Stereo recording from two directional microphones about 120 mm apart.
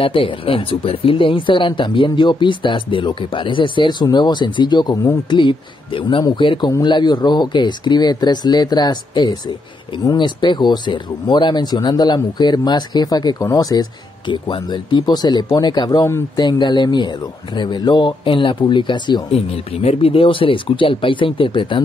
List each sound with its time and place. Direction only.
0.0 s speech: 50° left (ahead or behind); by 5.4 s 30° left (ahead or behind)
5.4 s speech: 40° left (ahead or behind)
19.3 s speech: 55° left (ahead or behind)